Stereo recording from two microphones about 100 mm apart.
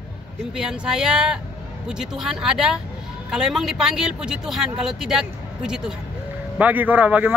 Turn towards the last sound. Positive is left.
turn(degrees=-15)  # may be behind; listen again after turning